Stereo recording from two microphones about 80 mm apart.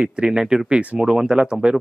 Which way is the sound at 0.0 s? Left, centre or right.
Centre.